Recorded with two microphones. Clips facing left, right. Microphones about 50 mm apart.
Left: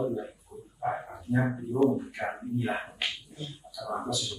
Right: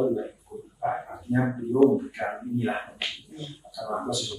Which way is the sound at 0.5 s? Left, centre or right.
Centre.